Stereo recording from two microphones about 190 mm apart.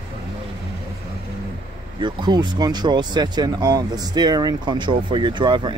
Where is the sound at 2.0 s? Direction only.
25° right (ahead or behind).